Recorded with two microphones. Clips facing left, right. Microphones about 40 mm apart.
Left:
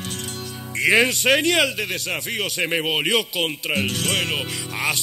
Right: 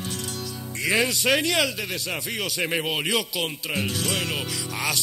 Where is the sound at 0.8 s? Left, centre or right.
Left.